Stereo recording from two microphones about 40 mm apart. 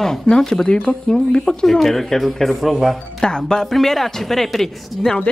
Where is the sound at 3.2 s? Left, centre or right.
Centre.